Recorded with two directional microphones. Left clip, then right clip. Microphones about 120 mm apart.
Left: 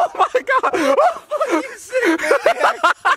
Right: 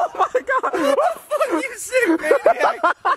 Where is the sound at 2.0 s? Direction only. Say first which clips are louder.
Left 1 dB; 45° left (ahead or behind).